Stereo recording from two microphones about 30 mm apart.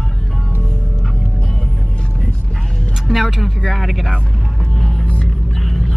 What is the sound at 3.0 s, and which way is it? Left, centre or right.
Speech, centre.